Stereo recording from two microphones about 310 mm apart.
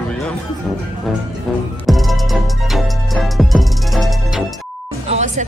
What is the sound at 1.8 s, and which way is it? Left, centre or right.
Music, centre.